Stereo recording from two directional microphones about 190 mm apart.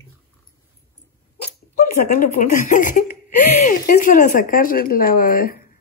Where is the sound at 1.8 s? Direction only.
45° left (ahead or behind).